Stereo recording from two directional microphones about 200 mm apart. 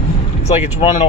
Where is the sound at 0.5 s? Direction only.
30° left (ahead or behind).